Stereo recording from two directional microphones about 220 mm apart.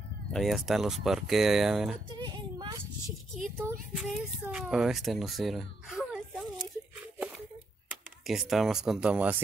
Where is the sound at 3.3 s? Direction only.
10° right (ahead or behind).